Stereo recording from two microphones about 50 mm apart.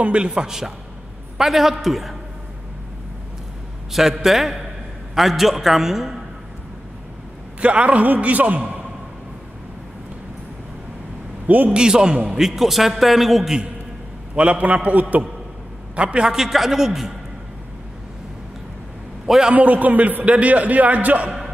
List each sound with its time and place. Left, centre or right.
0.0 s a man's voice: right
0.4 s a man's voice: centre
3.9 s a man's voice: centre
7.6 s a man's voice: right
11.4 s a man's voice: right
11.7 s a man's voice: centre
14.3 s a man's voice: right
16.0 s a man's voice: centre
16.3 s a man's voice: centre
19.2 s a man's voice: centre
19.5 s a man's voice: right